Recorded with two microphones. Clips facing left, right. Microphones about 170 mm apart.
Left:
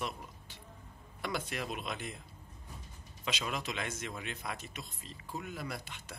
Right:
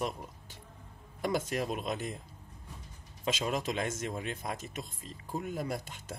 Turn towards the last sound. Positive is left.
turn(degrees=-45)  # may be behind; listen again after turning